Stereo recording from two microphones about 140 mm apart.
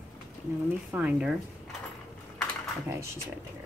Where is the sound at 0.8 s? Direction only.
10° right (ahead or behind).